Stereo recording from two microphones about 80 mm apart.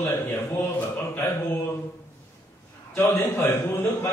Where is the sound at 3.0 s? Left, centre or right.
Left.